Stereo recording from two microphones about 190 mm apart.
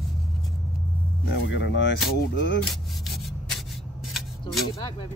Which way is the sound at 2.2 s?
65° left (ahead or behind).